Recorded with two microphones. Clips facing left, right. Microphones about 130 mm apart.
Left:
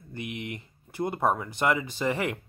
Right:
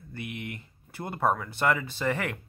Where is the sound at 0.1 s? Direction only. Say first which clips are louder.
Left 2 dB; 20° left (ahead or behind).